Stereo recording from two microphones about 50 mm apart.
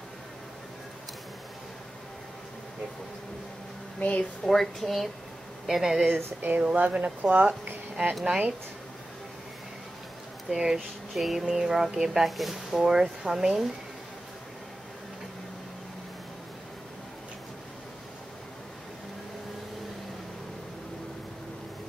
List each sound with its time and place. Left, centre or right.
4.0 s speech: left
4.5 s speech: centre
5.7 s speech: centre
6.6 s speech: right
8.1 s speech: centre
10.5 s speech: centre